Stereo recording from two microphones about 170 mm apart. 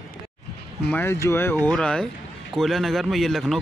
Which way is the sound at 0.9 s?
15° left (ahead or behind).